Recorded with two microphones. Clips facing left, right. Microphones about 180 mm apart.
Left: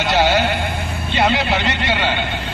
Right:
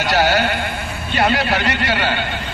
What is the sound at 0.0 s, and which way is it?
Sheep, 25° left (ahead or behind).